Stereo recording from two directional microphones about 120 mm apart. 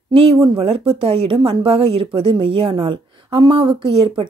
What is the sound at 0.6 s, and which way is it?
A woman's voice, 50° right (ahead or behind).